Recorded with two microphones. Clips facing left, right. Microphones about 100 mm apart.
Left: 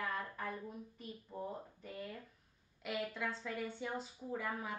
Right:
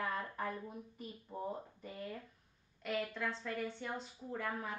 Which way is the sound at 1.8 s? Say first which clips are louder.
Right 1 dB; centre (ahead or behind).